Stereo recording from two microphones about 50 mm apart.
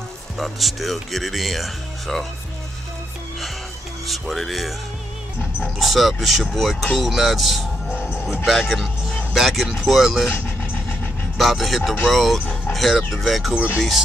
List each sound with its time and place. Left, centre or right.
0.4 s speech: centre
4.1 s speech: centre
5.8 s speech: centre
7.9 s music: left
8.5 s speech: centre
10.6 s vehicle: left
11.3 s speech: centre
12.4 s dog: left
12.7 s speech: centre